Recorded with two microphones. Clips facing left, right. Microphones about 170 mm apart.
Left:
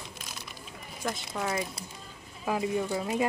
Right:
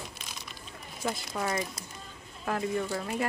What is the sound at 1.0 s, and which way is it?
Speech, centre (ahead or behind).